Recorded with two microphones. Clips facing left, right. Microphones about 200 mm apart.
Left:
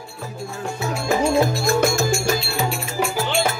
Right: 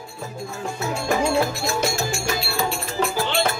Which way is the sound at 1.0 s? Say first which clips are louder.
Left 2 dB; 5° left (ahead or behind).